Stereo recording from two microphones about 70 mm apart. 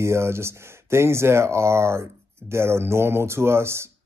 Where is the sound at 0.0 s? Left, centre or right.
Right.